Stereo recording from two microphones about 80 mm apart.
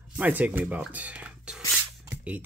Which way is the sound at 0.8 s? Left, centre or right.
Centre.